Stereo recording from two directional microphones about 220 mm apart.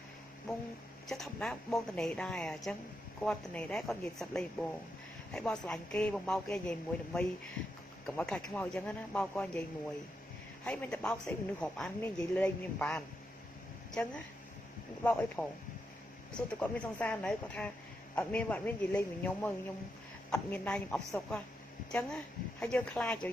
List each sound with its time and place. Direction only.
1.0 s a man's voice: centre (ahead or behind)
10.6 s a man's voice: 5° left (ahead or behind)
15.0 s a man's voice: 5° left (ahead or behind)